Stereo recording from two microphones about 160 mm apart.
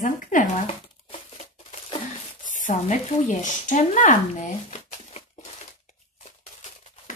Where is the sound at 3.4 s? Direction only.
50° left (ahead or behind).